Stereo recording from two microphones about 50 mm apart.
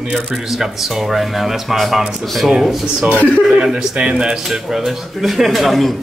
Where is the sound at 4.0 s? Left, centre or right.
Right.